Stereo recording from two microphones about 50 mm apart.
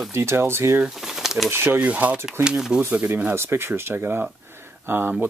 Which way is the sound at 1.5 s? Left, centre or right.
Right.